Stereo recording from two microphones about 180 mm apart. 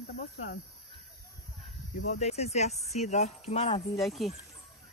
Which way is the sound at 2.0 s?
35° left (ahead or behind).